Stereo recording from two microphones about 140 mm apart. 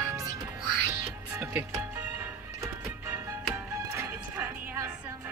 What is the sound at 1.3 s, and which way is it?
Music, 20° right (ahead or behind).